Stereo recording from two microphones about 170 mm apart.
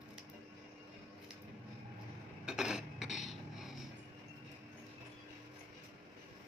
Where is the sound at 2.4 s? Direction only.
5° right (ahead or behind).